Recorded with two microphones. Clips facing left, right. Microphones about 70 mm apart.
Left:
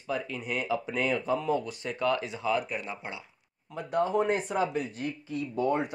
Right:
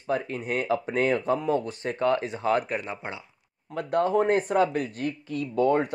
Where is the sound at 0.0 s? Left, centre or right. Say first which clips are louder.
Right 5 dB; right.